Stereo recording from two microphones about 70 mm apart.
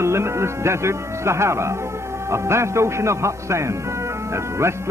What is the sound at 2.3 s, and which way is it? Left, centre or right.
A man's voice, right.